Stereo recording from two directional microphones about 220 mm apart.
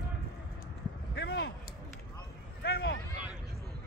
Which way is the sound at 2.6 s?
45° left (ahead or behind).